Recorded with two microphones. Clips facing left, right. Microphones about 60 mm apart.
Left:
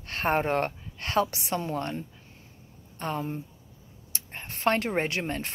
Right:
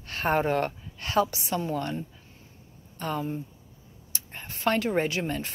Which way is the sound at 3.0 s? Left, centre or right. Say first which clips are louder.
Right 1 dB; left.